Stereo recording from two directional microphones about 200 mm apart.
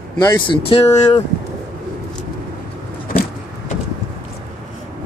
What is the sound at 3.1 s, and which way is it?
Vehicle, 45° left (ahead or behind).